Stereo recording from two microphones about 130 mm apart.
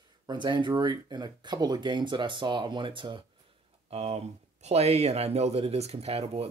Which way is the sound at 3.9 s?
55° right (ahead or behind).